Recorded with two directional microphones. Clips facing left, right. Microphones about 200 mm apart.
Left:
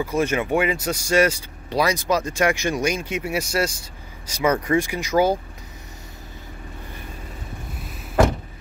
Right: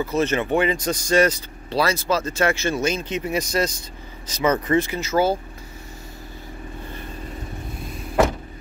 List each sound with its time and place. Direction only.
0.0 s speech: 10° left (ahead or behind)